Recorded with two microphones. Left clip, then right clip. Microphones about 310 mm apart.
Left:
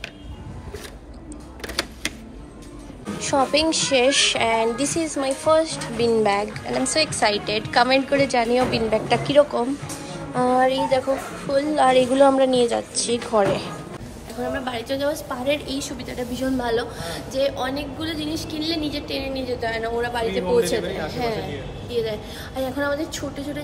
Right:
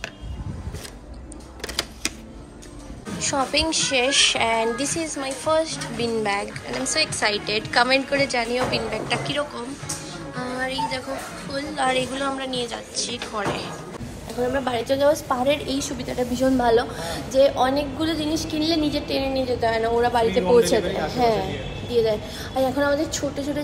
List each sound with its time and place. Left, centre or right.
3.2 s a woman's voice: centre
10.3 s music: centre
11.5 s a woman's voice: centre